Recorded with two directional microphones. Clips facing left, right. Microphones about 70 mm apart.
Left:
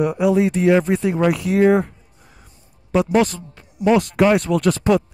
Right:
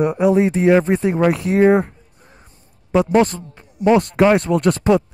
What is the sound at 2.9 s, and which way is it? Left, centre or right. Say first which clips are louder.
A man's voice: right 2 dB; right.